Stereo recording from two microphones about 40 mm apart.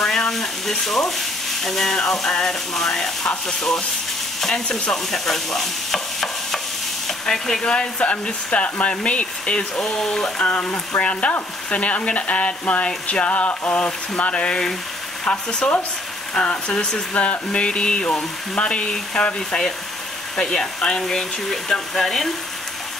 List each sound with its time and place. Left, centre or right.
0.0 s speech: centre
4.6 s stir: centre
7.1 s frying: centre; by 8.6 s left
8.6 s speech: left
9.0 s frying: left
9.8 s speech: centre
10.4 s speech: left
14.1 s frying: left
16.3 s frying: left
17.1 s speech: left
17.5 s frying: left
20.3 s speech: centre